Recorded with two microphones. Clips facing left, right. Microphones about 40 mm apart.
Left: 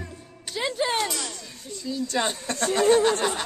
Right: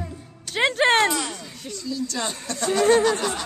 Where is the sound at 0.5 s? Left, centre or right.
Right.